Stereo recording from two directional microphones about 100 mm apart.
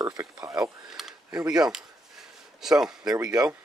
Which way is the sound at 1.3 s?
35° right (ahead or behind).